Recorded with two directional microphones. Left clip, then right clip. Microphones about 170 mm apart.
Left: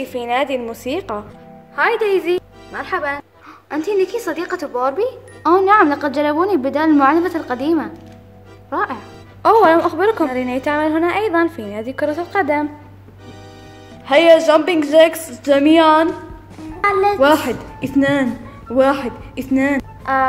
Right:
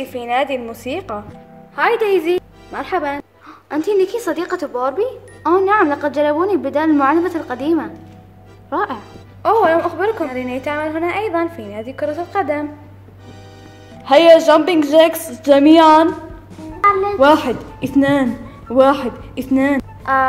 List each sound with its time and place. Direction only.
0.0 s speech: 15° left (ahead or behind)
1.8 s a woman's voice: 10° right (ahead or behind)
2.7 s speech: 20° right (ahead or behind)
3.7 s speech: 5° right (ahead or behind)
8.6 s speech: centre (ahead or behind)
9.4 s a woman's voice: 25° left (ahead or behind)
14.0 s a woman's voice: 15° right (ahead or behind)
16.8 s speech: 60° left (ahead or behind)
17.2 s a woman's voice: 10° right (ahead or behind)
19.8 s a sound: centre (ahead or behind)